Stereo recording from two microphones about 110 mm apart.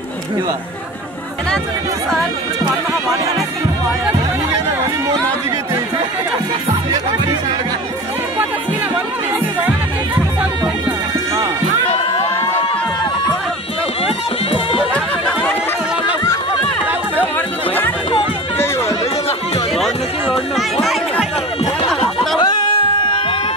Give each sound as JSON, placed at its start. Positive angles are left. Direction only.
{"t": 6.9, "sound": "music", "side_deg": -30}
{"t": 14.0, "sound": "music", "side_deg": 55}
{"t": 14.9, "sound": "chatter", "side_deg": 10}
{"t": 20.8, "sound": "chatter", "side_deg": 0}
{"t": 21.8, "sound": "a sound", "side_deg": 0}
{"t": 22.4, "sound": "music", "side_deg": 40}